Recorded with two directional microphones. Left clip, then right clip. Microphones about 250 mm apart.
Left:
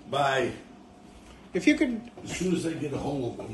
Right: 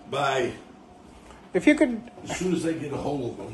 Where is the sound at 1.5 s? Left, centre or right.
Centre.